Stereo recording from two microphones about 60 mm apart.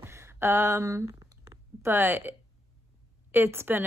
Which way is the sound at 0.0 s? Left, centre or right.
Right.